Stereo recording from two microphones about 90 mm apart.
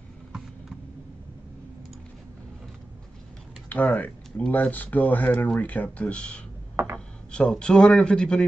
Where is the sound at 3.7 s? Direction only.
20° left (ahead or behind).